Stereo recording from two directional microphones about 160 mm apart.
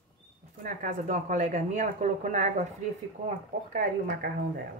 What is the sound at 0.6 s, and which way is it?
Speech, 55° right (ahead or behind).